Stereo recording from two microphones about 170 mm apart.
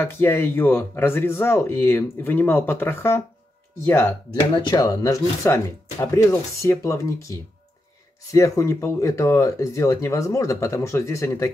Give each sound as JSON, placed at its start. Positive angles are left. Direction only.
{"t": 0.0, "sound": "speech", "side_deg": 15}